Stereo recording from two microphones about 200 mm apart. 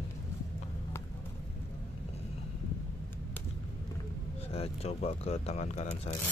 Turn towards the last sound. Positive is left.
turn(degrees=35)  # may be behind; listen again after turning